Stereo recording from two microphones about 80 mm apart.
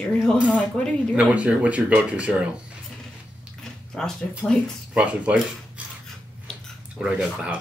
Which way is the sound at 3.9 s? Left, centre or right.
Centre.